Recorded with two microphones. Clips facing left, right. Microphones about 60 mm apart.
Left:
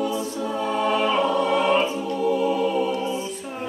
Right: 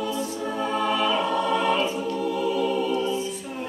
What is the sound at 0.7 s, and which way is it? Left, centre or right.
Choir, left.